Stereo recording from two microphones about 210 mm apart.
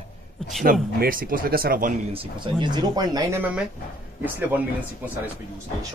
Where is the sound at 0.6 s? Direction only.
40° right (ahead or behind).